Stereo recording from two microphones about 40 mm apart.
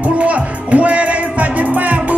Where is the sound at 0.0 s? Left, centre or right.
Right.